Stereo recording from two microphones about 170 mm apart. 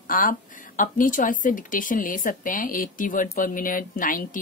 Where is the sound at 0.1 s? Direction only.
50° left (ahead or behind).